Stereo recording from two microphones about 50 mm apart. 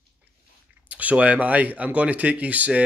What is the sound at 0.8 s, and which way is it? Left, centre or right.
Speech, right.